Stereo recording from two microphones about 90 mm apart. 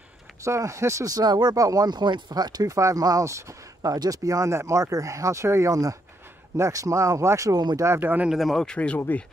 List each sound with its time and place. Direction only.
0.4 s speech: 35° right (ahead or behind)
8.3 s speech: centre (ahead or behind)
8.6 s speech: 15° left (ahead or behind)